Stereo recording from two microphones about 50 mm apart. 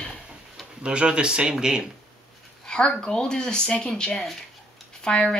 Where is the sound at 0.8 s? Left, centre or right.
Centre.